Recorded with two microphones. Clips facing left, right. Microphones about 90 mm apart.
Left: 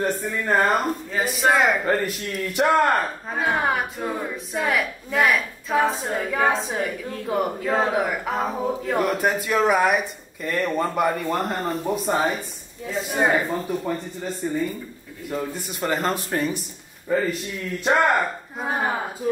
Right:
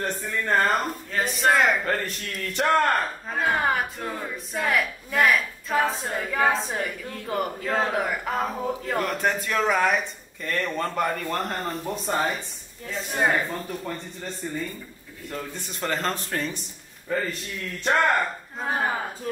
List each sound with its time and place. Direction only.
0.0 s speech: 10° left (ahead or behind)